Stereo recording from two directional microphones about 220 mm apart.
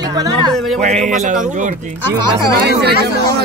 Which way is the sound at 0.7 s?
30° right (ahead or behind).